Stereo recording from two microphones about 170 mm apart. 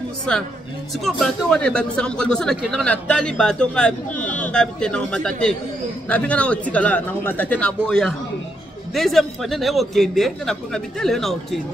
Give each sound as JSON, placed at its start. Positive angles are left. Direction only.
{"t": 0.9, "sound": "speech", "side_deg": 0}